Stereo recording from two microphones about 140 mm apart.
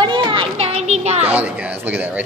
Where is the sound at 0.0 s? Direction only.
35° right (ahead or behind); by 1.2 s 50° right (ahead or behind).